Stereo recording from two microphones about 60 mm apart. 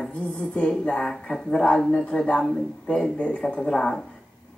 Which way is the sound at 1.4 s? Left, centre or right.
Centre.